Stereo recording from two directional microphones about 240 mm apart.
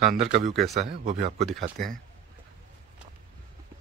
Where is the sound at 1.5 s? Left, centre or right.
Centre.